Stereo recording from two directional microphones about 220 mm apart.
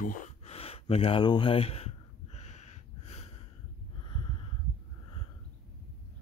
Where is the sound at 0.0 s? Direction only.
35° left (ahead or behind).